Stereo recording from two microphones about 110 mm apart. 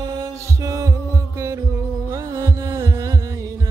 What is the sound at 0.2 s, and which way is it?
Heart sounds, 30° right (ahead or behind).